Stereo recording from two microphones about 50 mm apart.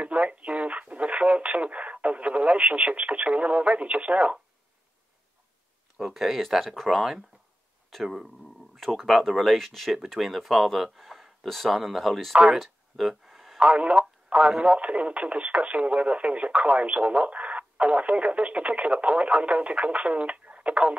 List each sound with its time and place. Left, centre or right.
0.0 s radio: right
5.9 s speech: centre
12.5 s a sound: centre
13.6 s speech: right